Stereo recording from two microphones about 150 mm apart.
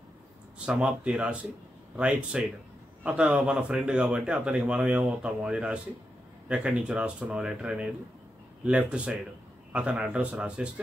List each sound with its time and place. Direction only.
0.7 s speech: 5° right (ahead or behind)